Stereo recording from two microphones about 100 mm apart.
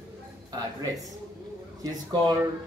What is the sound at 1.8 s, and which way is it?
Speech, 45° right (ahead or behind).